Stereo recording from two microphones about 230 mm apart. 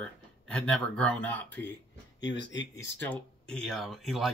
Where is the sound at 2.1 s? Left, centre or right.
Left.